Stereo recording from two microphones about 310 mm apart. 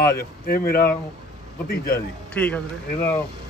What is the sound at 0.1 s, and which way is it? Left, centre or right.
Speech, left.